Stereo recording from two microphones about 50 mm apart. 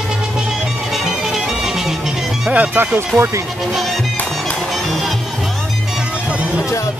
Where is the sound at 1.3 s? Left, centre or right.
Centre.